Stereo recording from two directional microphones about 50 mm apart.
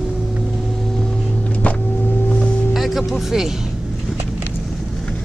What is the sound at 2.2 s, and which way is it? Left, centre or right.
Foghorn, left.